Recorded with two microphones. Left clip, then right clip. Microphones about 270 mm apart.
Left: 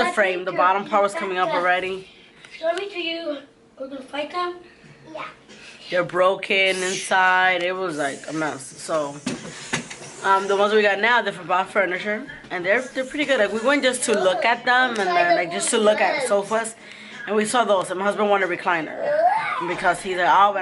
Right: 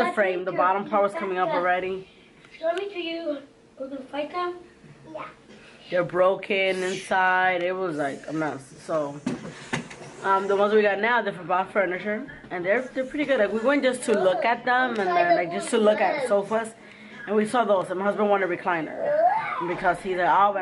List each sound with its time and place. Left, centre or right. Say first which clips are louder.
0.0 s a woman's voice: left 3 dB; centre
5.9 s a woman's voice: left 2 dB; centre
8.9 s speech: left 3 dB; right
9.2 s a woman's voice: left 2 dB; centre